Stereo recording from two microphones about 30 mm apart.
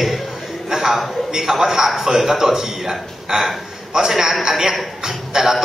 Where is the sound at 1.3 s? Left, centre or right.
Centre.